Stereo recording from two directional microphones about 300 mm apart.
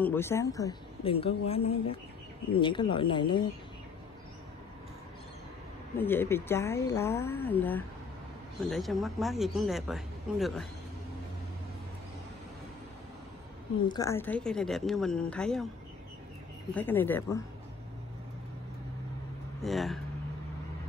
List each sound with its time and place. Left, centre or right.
0.0 s a woman's voice: centre
5.9 s a woman's voice: centre
13.8 s speech: centre
16.7 s a woman's voice: centre
19.6 s speech: centre